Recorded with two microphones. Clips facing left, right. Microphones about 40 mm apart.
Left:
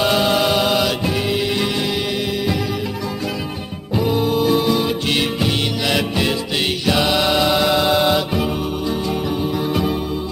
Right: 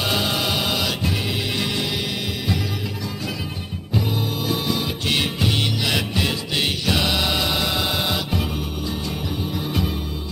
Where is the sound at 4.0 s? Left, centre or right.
Centre.